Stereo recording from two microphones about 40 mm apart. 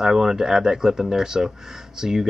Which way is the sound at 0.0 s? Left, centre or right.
Centre.